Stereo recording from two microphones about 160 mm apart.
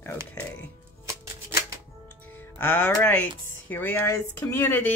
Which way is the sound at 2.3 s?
10° left (ahead or behind).